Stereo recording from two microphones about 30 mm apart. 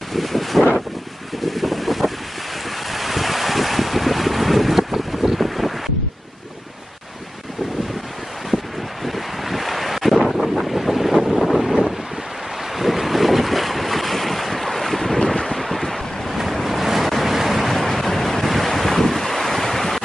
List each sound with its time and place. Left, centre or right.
0.1 s wind noise: centre
1.4 s boat: centre
8.5 s wind: centre
9.0 s wind noise: centre
12.7 s boat: centre
16.6 s waves: centre
17.1 s vehicle: centre
17.8 s waves: centre